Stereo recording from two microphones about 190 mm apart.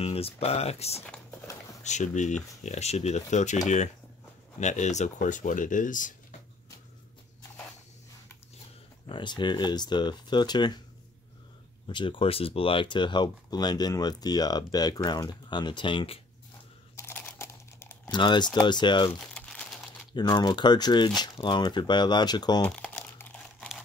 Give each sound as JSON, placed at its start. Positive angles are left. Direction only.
{"t": 0.0, "sound": "speech", "side_deg": 30}
{"t": 9.0, "sound": "speech", "side_deg": 25}
{"t": 11.9, "sound": "speech", "side_deg": 25}
{"t": 16.9, "sound": "crumpling", "side_deg": 10}
{"t": 18.1, "sound": "speech", "side_deg": 25}
{"t": 19.1, "sound": "crumpling", "side_deg": 5}
{"t": 20.2, "sound": "speech", "side_deg": 20}
{"t": 22.7, "sound": "crumpling", "side_deg": 5}